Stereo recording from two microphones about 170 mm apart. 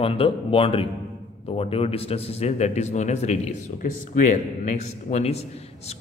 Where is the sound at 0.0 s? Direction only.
35° left (ahead or behind).